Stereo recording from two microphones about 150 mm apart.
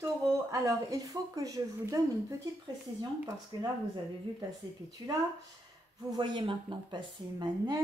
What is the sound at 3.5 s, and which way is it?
Speech, 30° right (ahead or behind).